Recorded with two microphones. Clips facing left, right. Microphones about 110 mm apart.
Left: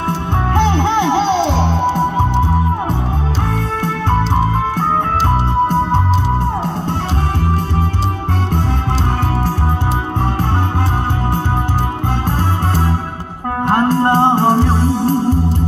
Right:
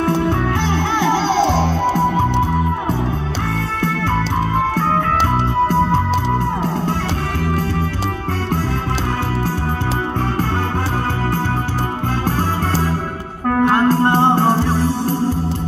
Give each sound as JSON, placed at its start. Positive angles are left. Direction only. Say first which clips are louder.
{"t": 1.0, "sound": "music", "louder": "left 1 dB", "side_deg": -40}
{"t": 13.7, "sound": "music", "louder": "left 3 dB", "side_deg": 45}